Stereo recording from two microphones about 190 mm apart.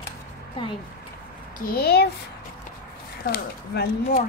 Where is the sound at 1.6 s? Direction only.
55° left (ahead or behind).